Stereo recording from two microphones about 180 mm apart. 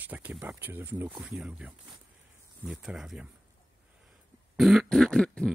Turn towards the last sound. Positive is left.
turn(degrees=5)  # may be behind; listen again after turning